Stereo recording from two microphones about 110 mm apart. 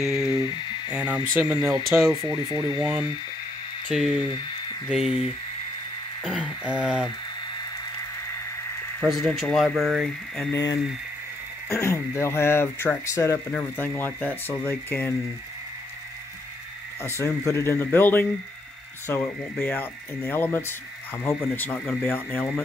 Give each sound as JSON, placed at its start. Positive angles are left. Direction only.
{"t": 0.0, "sound": "speech", "side_deg": -5}
{"t": 2.0, "sound": "speech", "side_deg": -45}
{"t": 3.9, "sound": "speech", "side_deg": -5}
{"t": 4.3, "sound": "a sound", "side_deg": 45}
{"t": 4.8, "sound": "speech", "side_deg": -5}
{"t": 6.6, "sound": "a sound", "side_deg": -10}
{"t": 9.0, "sound": "speech", "side_deg": 5}
{"t": 10.5, "sound": "speech", "side_deg": 40}
{"t": 11.7, "sound": "speech", "side_deg": 25}
{"t": 17.0, "sound": "speech", "side_deg": 25}